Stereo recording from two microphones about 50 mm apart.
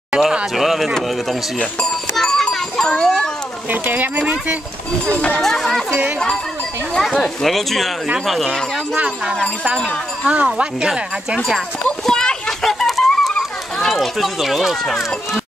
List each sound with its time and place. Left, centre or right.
0.6 s speech: centre
1.8 s goat: centre
3.7 s speech: right
5.4 s speech: centre
10.2 s speech: right
10.8 s speech: centre
12.1 s children playing: centre